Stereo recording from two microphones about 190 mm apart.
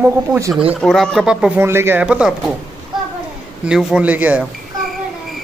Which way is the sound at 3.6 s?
5° right (ahead or behind).